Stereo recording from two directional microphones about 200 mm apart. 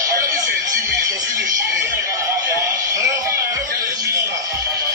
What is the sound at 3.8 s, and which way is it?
Music, 20° right (ahead or behind).